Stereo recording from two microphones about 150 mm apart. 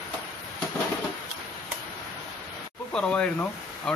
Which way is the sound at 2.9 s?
5° left (ahead or behind).